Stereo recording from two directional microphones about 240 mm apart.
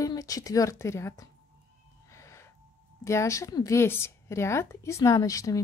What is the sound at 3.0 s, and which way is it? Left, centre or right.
Speech, centre.